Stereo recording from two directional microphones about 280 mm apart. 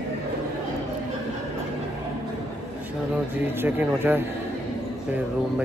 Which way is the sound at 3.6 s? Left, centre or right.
Centre.